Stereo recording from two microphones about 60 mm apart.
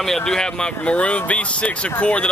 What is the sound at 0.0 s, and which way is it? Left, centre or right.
Speech, centre.